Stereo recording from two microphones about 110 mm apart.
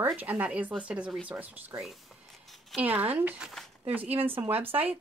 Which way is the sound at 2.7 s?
15° right (ahead or behind).